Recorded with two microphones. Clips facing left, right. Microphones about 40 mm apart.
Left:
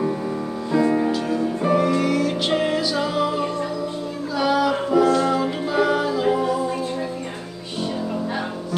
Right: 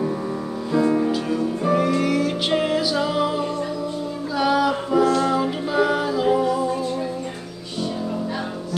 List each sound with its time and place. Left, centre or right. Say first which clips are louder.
0.7 s music: even; centre
1.8 s music: even; centre
4.4 s a sound: even; centre
5.2 s music: even; centre